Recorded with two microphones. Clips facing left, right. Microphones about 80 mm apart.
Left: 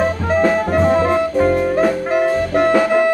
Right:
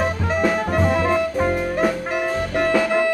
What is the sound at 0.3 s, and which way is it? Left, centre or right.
Music, left.